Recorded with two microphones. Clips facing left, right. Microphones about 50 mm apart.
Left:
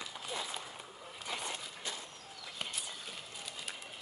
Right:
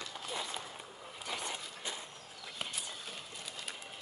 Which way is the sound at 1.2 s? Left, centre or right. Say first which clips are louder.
Even; centre.